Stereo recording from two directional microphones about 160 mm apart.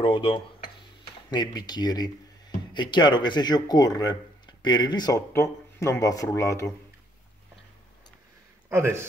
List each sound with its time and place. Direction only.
0.0 s speech: 35° left (ahead or behind)
8.6 s speech: 15° right (ahead or behind)